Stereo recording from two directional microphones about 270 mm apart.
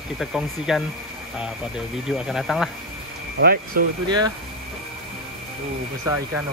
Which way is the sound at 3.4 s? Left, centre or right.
Right.